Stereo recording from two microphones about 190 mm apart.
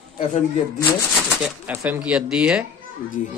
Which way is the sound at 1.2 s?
5° right (ahead or behind).